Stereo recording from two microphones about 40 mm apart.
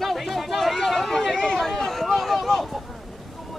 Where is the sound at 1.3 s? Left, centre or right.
Centre.